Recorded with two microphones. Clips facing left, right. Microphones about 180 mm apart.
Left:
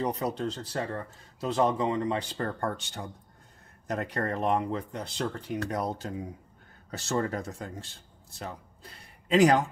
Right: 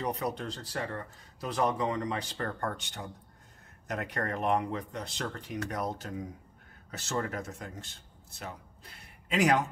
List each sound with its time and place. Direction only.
0.0 s speech: 30° left (ahead or behind)
9.3 s speech: 35° left (ahead or behind)